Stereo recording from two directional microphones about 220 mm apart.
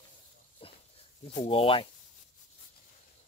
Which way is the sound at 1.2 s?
25° left (ahead or behind).